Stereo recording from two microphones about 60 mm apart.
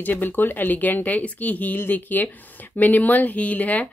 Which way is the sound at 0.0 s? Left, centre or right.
Left.